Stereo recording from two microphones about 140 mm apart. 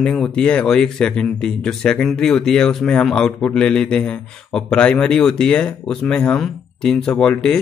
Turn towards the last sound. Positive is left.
turn(degrees=5)  # may be behind; listen again after turning